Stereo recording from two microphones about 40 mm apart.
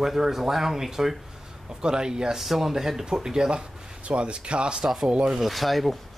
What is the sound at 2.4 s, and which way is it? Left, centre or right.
Speech, centre.